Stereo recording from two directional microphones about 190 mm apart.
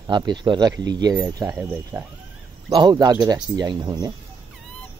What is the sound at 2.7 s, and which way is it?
Speech, 20° right (ahead or behind).